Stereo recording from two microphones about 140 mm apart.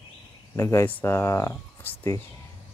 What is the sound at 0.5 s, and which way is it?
Speech, 20° left (ahead or behind).